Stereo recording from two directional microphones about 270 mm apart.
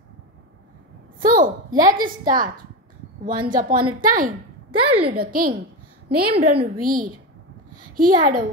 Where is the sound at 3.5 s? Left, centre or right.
Right.